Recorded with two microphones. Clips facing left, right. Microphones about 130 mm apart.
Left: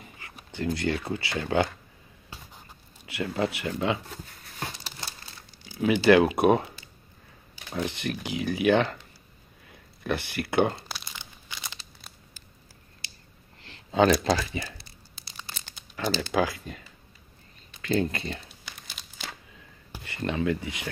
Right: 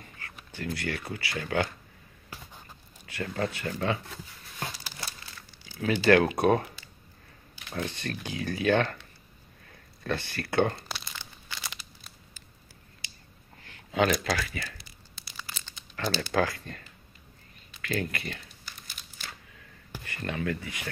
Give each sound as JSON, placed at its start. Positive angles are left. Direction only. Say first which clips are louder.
{"t": 0.5, "sound": "speech", "louder": "left 6 dB", "side_deg": 25}
{"t": 3.1, "sound": "speech", "louder": "left 3 dB", "side_deg": 15}
{"t": 5.7, "sound": "speech", "louder": "left 3 dB", "side_deg": 20}
{"t": 7.7, "sound": "speech", "louder": "left 3 dB", "side_deg": 15}
{"t": 11.1, "sound": "crumpling", "louder": "even", "side_deg": 20}
{"t": 13.9, "sound": "speech", "louder": "left 5 dB", "side_deg": 30}
{"t": 16.0, "sound": "speech", "louder": "left 2 dB", "side_deg": 15}
{"t": 17.8, "sound": "speech", "louder": "left 6 dB", "side_deg": 25}
{"t": 18.7, "sound": "crumpling", "louder": "left 2 dB", "side_deg": 85}
{"t": 19.9, "sound": "speech", "louder": "left 4 dB", "side_deg": 25}